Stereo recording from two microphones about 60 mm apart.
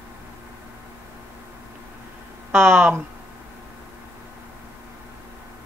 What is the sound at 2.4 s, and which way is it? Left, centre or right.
Speech, right.